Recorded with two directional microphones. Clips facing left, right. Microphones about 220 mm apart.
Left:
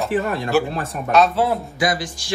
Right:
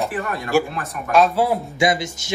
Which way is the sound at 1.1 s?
10° right (ahead or behind).